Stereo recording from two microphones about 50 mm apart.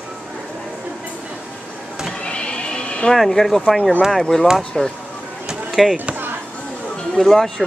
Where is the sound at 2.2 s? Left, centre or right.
Left.